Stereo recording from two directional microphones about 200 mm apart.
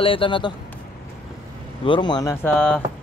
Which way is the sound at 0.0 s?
25° left (ahead or behind).